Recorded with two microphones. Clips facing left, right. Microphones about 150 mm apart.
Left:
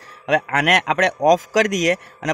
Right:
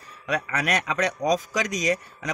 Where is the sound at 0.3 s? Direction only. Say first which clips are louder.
Left 8 dB; 90° left.